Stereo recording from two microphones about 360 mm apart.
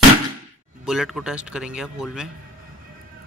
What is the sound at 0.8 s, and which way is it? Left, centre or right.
Speech, centre.